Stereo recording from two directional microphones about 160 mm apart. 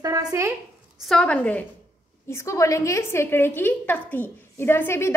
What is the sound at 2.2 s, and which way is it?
A woman's voice, 20° left (ahead or behind).